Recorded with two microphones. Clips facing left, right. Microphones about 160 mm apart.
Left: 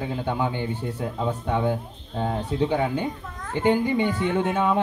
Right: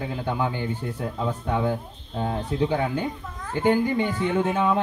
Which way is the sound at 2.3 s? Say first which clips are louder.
Even; 15° left (ahead or behind).